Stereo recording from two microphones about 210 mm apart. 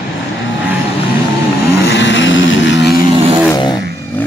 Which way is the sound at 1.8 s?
60° left (ahead or behind).